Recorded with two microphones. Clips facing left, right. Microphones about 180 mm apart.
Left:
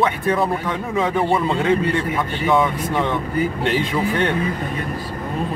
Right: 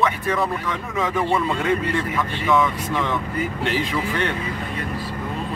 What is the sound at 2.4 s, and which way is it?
Speech, 30° left (ahead or behind).